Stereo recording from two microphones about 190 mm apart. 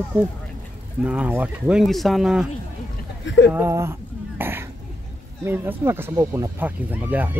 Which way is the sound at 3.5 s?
15° right (ahead or behind).